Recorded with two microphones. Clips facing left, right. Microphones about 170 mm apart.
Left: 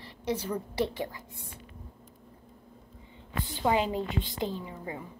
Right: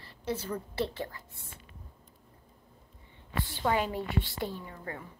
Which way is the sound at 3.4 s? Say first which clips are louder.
Left 3 dB; 15° left (ahead or behind).